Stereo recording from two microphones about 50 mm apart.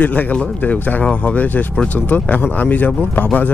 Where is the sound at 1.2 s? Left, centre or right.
Left.